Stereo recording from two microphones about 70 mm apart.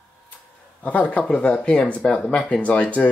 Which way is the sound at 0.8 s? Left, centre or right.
Left.